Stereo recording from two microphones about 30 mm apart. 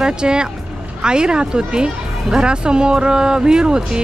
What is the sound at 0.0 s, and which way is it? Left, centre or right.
Speech, right.